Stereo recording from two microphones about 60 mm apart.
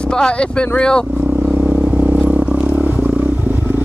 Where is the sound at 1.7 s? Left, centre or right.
Right.